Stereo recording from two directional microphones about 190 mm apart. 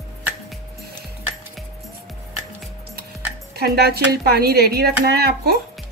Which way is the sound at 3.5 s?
55° right (ahead or behind).